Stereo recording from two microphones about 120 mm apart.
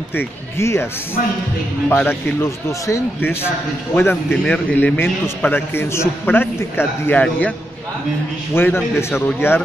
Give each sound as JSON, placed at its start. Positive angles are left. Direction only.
{"t": 0.1, "sound": "speech", "side_deg": 20}
{"t": 1.9, "sound": "a man's voice", "side_deg": 15}
{"t": 8.5, "sound": "a man's voice", "side_deg": 15}